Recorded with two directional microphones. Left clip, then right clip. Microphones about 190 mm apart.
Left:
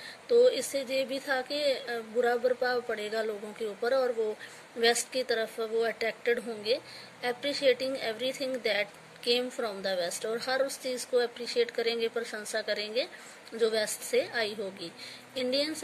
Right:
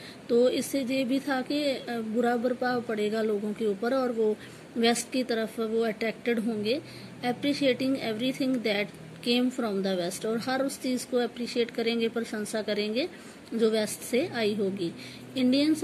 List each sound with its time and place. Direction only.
0.3 s a woman's voice: 10° left (ahead or behind)